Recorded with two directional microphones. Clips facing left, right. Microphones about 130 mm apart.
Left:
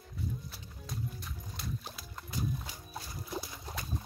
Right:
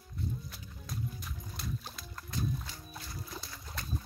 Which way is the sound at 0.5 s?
Centre (ahead or behind).